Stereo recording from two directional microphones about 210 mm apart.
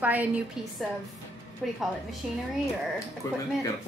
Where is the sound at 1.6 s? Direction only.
Centre (ahead or behind).